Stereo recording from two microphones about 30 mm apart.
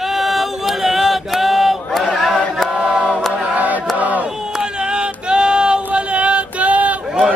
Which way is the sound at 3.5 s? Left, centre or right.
Right.